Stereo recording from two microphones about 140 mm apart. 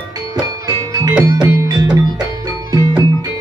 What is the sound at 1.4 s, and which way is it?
Music, 25° right (ahead or behind).